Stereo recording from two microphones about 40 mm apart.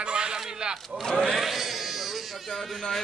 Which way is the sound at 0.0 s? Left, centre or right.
Right.